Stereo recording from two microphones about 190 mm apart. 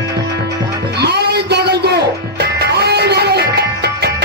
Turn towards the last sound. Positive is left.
turn(degrees=-60)  # may be behind; listen again after turning